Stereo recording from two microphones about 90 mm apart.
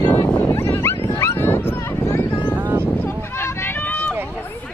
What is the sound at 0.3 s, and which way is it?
Dog, 20° left (ahead or behind).